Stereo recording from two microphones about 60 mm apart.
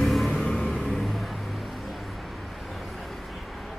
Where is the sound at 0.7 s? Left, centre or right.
Centre.